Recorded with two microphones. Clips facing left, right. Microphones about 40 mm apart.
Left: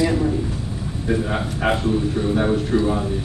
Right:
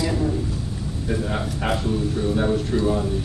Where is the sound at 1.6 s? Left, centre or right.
Centre.